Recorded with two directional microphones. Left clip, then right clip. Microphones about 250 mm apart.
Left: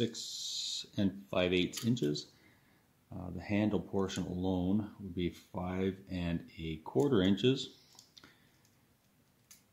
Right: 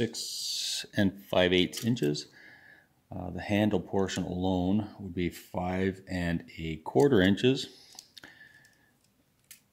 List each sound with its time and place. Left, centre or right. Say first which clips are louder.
0.0 s speech: right 4 dB; right